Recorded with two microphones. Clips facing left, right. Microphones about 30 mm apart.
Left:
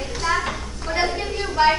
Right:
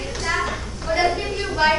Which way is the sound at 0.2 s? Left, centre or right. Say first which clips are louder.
Left 1 dB; centre.